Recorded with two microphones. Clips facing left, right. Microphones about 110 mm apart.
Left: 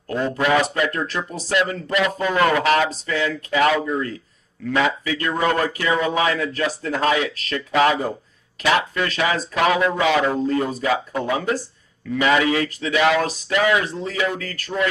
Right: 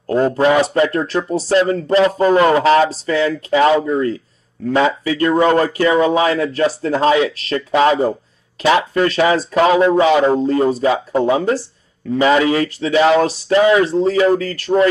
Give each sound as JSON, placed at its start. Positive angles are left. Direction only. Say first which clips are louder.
{"t": 0.0, "sound": "a man's voice", "louder": "right 8 dB", "side_deg": -35}